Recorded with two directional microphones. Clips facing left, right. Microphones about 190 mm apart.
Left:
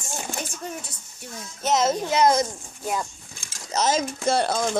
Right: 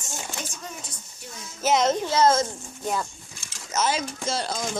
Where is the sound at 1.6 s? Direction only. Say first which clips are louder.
Even; 5° left (ahead or behind).